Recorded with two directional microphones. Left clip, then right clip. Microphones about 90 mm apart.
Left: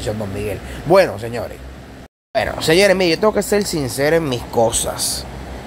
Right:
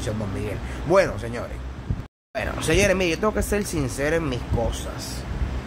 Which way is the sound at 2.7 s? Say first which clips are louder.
Left 7 dB; 45° left (ahead or behind).